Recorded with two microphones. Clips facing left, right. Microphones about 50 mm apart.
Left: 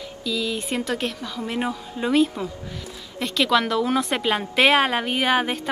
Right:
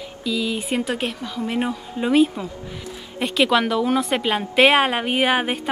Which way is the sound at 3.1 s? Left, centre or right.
Centre.